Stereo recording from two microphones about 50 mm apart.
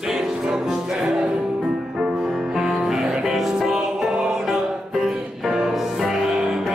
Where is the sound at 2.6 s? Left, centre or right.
Centre.